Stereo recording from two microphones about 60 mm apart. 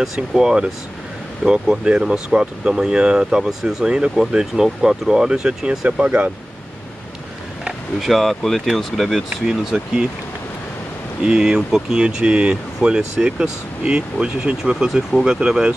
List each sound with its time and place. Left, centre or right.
0.0 s speech: centre
7.6 s speech: centre
11.2 s speech: centre